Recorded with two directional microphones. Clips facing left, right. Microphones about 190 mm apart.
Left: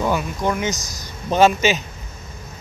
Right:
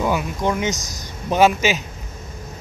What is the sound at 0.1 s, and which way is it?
Speech, 20° right (ahead or behind).